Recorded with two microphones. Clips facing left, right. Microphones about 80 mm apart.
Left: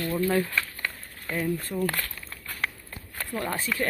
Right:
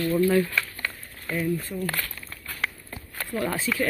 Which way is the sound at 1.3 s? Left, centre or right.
Left.